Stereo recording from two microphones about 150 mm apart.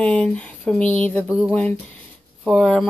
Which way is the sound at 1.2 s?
10° right (ahead or behind).